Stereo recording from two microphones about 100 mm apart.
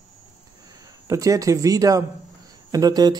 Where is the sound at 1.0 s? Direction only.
35° right (ahead or behind).